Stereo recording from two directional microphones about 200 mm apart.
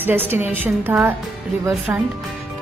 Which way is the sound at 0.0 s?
10° right (ahead or behind).